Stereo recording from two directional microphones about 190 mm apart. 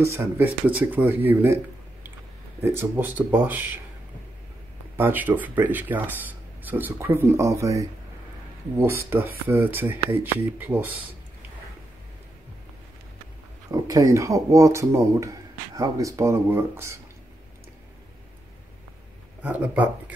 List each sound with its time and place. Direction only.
0.0 s speech: 15° right (ahead or behind)
2.6 s speech: 10° right (ahead or behind)
4.9 s speech: 10° right (ahead or behind)
13.7 s speech: 20° right (ahead or behind)
19.4 s speech: 5° right (ahead or behind)